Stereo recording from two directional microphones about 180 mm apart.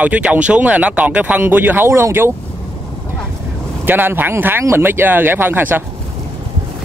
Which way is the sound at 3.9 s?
10° right (ahead or behind).